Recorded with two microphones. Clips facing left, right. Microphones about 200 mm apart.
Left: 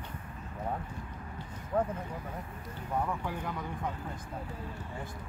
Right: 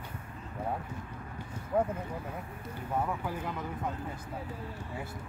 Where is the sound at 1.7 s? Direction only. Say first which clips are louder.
Right 1 dB; 10° right (ahead or behind).